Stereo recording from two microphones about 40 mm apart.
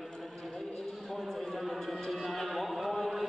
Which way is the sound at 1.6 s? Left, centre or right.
Centre.